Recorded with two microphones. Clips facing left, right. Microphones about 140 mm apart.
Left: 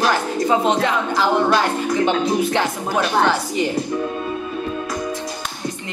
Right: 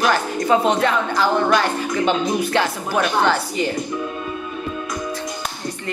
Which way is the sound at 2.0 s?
20° left (ahead or behind).